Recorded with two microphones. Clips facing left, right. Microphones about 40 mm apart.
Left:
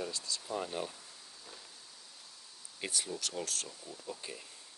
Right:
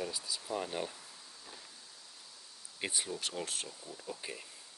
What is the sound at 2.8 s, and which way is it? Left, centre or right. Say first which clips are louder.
Speech: right 1 dB; right.